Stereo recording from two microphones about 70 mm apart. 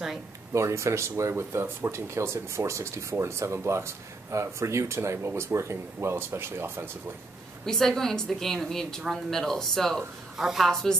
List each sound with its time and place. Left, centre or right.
0.5 s speech: right
7.6 s a woman's voice: centre